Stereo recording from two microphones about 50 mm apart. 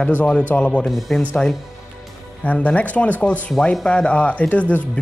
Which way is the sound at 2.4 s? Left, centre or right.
Left.